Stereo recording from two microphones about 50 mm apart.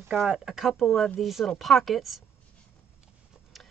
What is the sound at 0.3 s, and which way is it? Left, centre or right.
Speech, centre.